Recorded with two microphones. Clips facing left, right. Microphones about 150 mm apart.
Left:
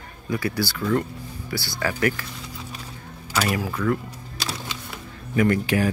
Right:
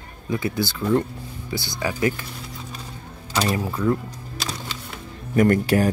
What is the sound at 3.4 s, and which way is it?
Speech, 25° right (ahead or behind).